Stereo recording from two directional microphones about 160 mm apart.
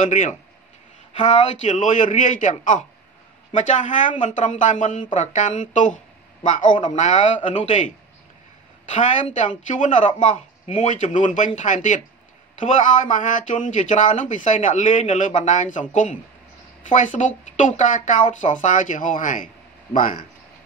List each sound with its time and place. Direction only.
0.0 s speech: 50° left (ahead or behind)
8.9 s speech: 50° left (ahead or behind)